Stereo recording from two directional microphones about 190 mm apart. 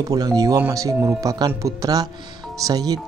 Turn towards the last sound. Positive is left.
turn(degrees=-20)  # may be behind; listen again after turning